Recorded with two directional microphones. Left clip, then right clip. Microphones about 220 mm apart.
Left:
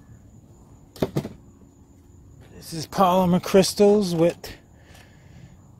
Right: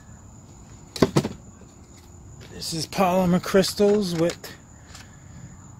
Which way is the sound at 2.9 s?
25° left (ahead or behind).